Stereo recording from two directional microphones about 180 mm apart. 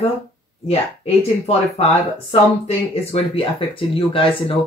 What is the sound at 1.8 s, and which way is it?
Speech, 35° left (ahead or behind).